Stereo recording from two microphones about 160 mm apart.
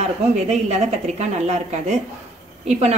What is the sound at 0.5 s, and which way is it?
Speech, 45° right (ahead or behind).